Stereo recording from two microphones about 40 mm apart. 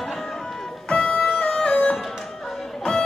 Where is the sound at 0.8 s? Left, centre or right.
Left.